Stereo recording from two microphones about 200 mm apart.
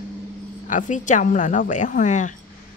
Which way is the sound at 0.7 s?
40° left (ahead or behind).